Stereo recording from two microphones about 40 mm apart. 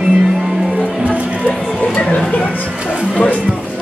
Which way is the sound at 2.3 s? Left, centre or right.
Left.